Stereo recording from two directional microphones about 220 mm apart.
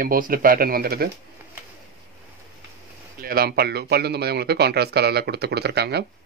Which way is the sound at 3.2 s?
45° right (ahead or behind).